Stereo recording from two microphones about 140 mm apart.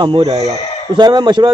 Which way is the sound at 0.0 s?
35° right (ahead or behind).